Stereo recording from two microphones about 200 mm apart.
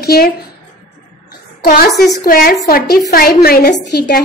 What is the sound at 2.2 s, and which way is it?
A woman's voice, 45° left (ahead or behind).